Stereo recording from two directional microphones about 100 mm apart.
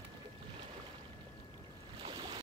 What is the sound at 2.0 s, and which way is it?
Boat, 50° right (ahead or behind).